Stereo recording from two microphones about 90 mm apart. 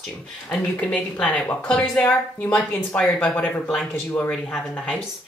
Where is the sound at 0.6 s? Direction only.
15° left (ahead or behind).